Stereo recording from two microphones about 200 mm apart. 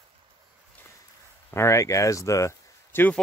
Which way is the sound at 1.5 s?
15° left (ahead or behind).